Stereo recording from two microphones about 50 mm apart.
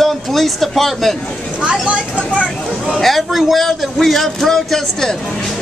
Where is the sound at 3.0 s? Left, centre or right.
Centre.